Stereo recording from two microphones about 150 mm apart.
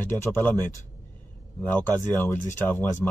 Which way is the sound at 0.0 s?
15° left (ahead or behind).